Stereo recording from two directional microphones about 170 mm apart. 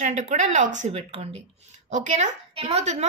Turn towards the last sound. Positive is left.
turn(degrees=-40)  # may be behind; listen again after turning